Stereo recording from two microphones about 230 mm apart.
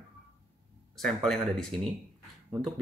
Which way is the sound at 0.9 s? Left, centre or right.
Centre.